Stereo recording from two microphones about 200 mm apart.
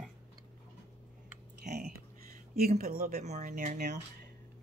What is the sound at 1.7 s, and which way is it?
Speech, 50° right (ahead or behind).